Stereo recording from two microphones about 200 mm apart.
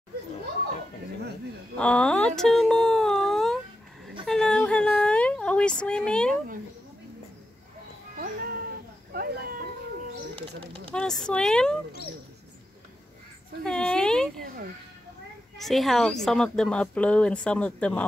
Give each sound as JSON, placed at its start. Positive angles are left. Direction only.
{"t": 1.8, "sound": "cat", "side_deg": 5}
{"t": 4.3, "sound": "a sound", "side_deg": 5}
{"t": 8.2, "sound": "cat", "side_deg": -50}
{"t": 9.1, "sound": "a sound", "side_deg": -50}
{"t": 10.7, "sound": "speech", "side_deg": 5}
{"t": 13.7, "sound": "speech", "side_deg": 5}
{"t": 15.5, "sound": "speech", "side_deg": 0}